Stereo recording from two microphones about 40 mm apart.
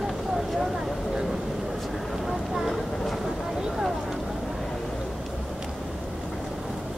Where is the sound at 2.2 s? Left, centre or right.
Centre.